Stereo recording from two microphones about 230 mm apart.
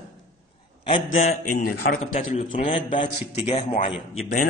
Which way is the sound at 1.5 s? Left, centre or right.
Left.